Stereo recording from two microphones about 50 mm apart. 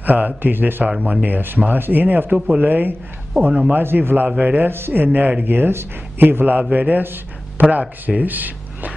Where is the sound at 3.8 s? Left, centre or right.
Right.